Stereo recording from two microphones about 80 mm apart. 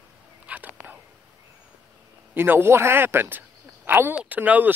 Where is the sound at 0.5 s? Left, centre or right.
Centre.